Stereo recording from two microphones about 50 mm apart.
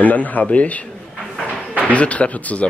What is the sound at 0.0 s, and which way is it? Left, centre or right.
Speech, left.